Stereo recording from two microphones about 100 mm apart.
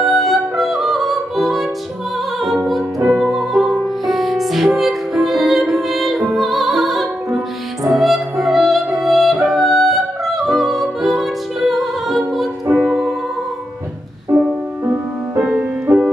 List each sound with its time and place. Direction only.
0.0 s music: centre (ahead or behind)
15.9 s music: 20° right (ahead or behind)